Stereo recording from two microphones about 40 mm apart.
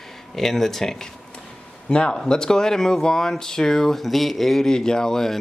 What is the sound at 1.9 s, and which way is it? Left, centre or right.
A man's voice, left.